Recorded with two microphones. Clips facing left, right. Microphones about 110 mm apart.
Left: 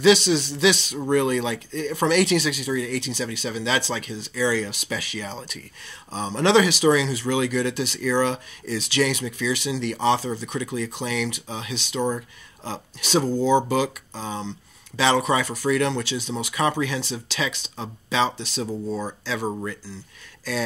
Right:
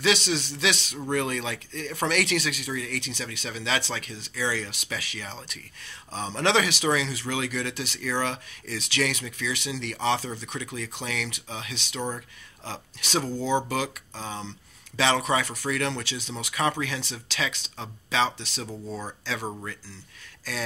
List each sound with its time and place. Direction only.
0.2 s speech: 35° left (ahead or behind)
18.9 s speech: 45° left (ahead or behind)
19.4 s speech: 25° left (ahead or behind)